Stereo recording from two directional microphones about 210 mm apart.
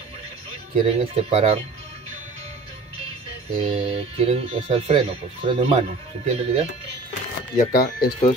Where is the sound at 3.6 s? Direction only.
25° right (ahead or behind).